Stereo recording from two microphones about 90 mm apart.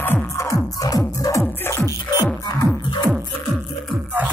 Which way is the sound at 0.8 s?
40° left (ahead or behind).